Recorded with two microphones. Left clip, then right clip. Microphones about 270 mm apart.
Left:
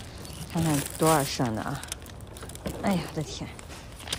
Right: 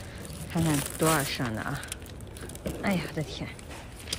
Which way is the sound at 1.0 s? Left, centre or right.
Centre.